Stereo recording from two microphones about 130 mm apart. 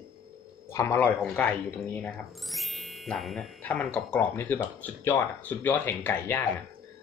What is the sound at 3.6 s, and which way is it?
Speech, 5° left (ahead or behind).